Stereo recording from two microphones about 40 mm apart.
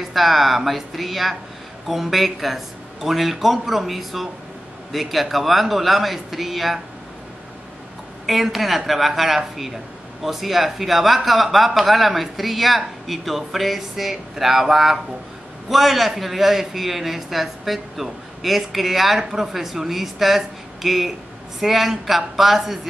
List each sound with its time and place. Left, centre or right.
0.1 s speech: centre
8.3 s speech: centre